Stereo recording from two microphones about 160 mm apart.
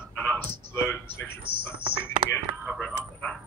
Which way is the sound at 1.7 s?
30° right (ahead or behind).